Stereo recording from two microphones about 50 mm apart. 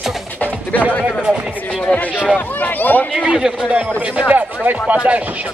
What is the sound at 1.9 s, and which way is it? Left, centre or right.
Speech, left.